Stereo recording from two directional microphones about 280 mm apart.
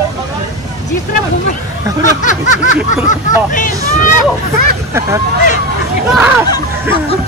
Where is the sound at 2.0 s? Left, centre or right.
Left.